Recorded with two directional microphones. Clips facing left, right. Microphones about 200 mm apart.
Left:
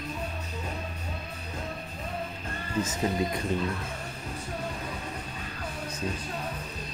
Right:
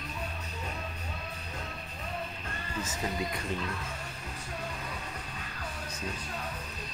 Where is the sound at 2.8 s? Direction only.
25° left (ahead or behind).